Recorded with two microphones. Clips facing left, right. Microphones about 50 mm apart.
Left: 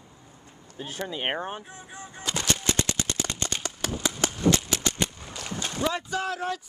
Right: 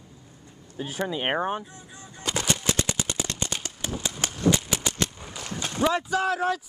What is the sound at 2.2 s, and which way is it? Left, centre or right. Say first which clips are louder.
Gunshot: right 1 dB; centre.